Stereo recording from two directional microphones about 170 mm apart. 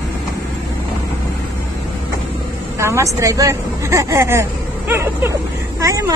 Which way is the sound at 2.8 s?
15° right (ahead or behind).